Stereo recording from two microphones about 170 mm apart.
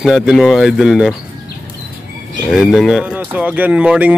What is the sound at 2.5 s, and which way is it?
Speech, centre (ahead or behind).